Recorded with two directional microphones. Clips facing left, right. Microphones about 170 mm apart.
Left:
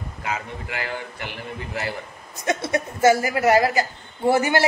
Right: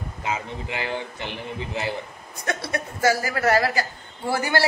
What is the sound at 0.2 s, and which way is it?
A man's voice, 20° right (ahead or behind).